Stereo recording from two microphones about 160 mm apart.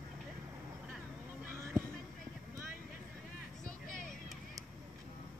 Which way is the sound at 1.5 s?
15° right (ahead or behind).